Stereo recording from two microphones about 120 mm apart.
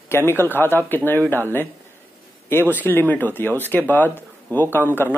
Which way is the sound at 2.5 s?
15° left (ahead or behind).